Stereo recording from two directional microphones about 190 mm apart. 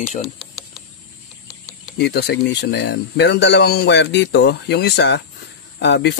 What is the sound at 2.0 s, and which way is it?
Speech, 60° left (ahead or behind).